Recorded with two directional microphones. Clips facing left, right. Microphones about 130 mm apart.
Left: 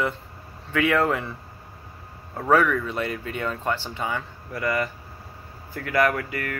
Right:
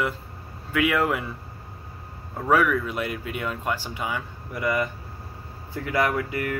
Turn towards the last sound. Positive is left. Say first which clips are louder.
# left 1 dB
turn(degrees=-20)  # may be behind; listen again after turning